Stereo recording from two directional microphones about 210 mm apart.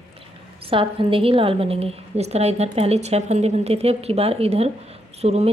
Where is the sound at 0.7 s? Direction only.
25° right (ahead or behind).